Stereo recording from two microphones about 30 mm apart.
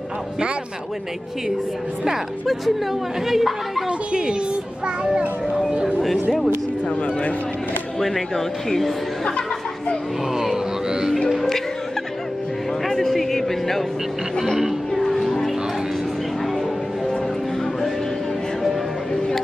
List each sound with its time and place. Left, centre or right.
3.3 s speech: centre
4.8 s a child's voice: right
5.9 s speech: centre
8.0 s speech: centre
10.3 s music: centre
10.9 s music: right
11.2 s music: centre
12.8 s a sound: centre
15.0 s music: centre